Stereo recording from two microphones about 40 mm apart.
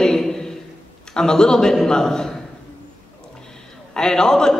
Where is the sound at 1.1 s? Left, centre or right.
Centre.